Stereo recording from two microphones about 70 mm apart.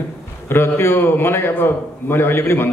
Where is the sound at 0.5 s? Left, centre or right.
Left.